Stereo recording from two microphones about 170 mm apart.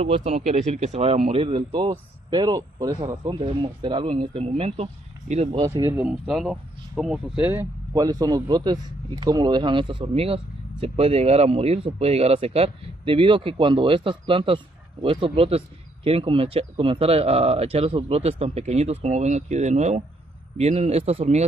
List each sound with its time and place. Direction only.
0.0 s speech: 40° right (ahead or behind)
5.6 s speech: 20° right (ahead or behind)
7.9 s speech: 20° right (ahead or behind); by 21.5 s 40° right (ahead or behind)